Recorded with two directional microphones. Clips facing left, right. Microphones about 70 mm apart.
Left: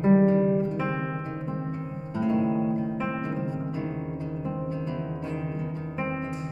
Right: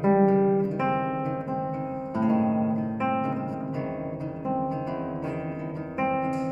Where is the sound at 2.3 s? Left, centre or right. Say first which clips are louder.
Even; centre.